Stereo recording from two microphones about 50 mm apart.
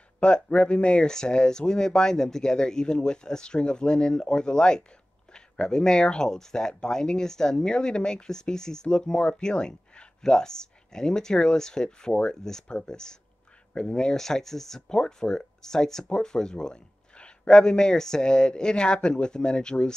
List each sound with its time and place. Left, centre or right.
0.2 s speech: left